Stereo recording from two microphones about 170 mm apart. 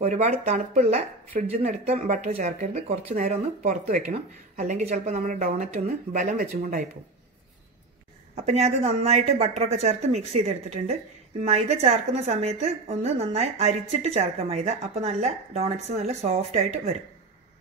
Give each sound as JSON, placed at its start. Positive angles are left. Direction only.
{"t": 0.0, "sound": "speech", "side_deg": -45}
{"t": 8.4, "sound": "speech", "side_deg": -40}